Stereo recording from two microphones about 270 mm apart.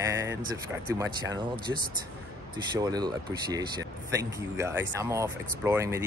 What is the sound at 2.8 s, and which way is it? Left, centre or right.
Speech, centre.